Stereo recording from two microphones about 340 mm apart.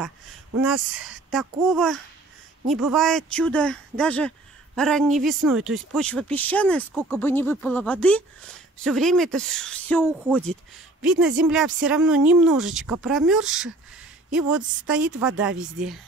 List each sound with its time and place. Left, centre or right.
0.7 s speech: right
1.3 s speech: centre
14.9 s speech: centre